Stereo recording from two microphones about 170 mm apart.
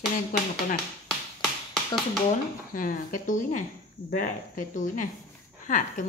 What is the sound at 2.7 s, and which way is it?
A woman's voice, 55° left (ahead or behind).